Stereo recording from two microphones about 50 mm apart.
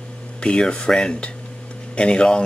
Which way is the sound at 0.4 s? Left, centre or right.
Centre.